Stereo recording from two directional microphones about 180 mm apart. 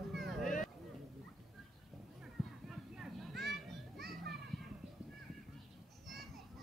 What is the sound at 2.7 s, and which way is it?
Children playing, centre (ahead or behind).